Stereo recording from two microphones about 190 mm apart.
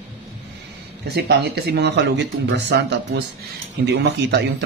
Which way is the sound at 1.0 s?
60° right (ahead or behind).